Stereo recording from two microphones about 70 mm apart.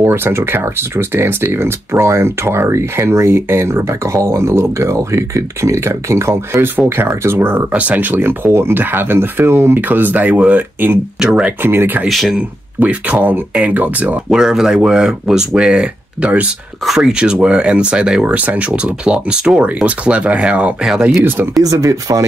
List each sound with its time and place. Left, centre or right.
0.0 s speech: right
12.1 s speech: centre
12.4 s speech: centre
14.3 s speech: centre
16.8 s speech: centre
21.6 s speech: right